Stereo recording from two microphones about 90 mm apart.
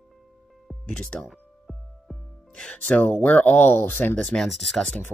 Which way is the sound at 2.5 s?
15° left (ahead or behind).